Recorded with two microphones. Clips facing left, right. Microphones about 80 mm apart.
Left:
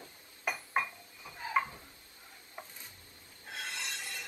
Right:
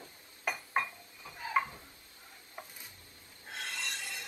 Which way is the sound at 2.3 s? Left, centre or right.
Centre.